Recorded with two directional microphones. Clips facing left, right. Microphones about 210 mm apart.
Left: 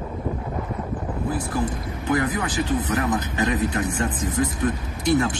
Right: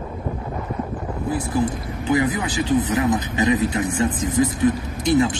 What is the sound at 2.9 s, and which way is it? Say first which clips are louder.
Speech: right 3 dB; 15° right (ahead or behind).